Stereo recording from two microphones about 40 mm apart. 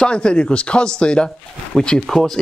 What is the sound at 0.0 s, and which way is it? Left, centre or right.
Speech, left.